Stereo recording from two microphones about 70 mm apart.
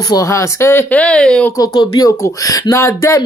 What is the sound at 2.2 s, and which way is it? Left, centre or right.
Speech, left.